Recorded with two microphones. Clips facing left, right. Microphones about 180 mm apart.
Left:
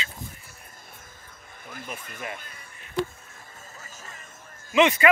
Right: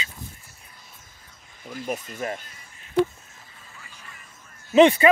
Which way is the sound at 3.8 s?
40° left (ahead or behind).